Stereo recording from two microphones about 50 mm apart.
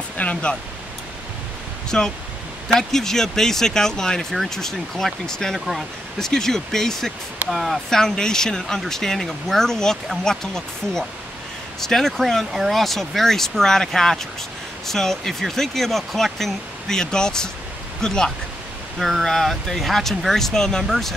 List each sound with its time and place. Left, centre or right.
0.2 s speech: left
1.9 s speech: centre
8.0 s speech: centre
18.9 s speech: centre